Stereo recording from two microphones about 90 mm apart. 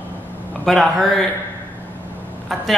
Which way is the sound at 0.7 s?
Centre (ahead or behind).